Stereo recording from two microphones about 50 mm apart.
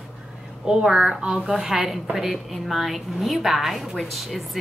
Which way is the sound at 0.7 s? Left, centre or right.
Centre.